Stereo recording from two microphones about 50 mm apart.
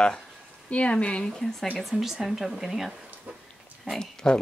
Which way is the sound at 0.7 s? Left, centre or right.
Left.